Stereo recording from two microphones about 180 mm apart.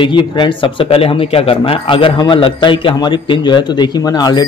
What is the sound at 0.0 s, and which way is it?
A man's voice, 25° left (ahead or behind).